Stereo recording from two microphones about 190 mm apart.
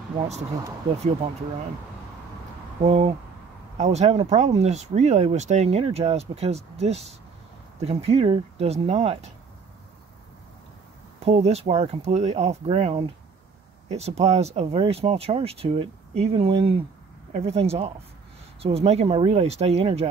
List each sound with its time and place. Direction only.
2.8 s speech: 30° right (ahead or behind)
11.2 s speech: 35° right (ahead or behind)